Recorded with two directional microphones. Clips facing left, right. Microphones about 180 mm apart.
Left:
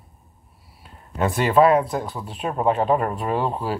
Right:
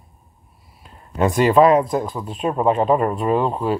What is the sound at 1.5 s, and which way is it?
Speech, 30° right (ahead or behind).